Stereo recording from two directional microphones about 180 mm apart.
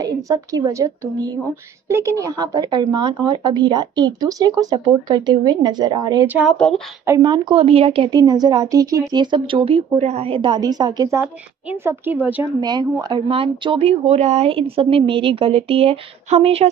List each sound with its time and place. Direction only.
0.0 s a woman's voice: 20° right (ahead or behind)
6.2 s speech: 10° right (ahead or behind)
6.5 s a woman's voice: 5° left (ahead or behind)
7.1 s a woman's voice: 25° right (ahead or behind)
12.5 s a woman's voice: 25° right (ahead or behind)